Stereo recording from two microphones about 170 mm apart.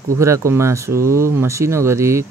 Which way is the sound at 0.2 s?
15° right (ahead or behind).